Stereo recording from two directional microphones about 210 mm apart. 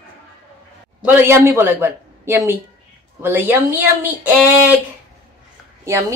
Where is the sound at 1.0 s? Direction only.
10° right (ahead or behind).